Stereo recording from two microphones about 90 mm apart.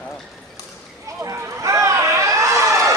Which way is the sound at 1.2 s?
35° right (ahead or behind).